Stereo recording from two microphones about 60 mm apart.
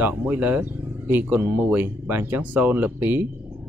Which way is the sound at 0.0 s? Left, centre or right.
Right.